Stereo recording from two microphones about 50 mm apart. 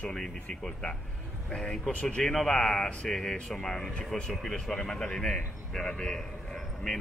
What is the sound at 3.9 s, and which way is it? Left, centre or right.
Speech, left.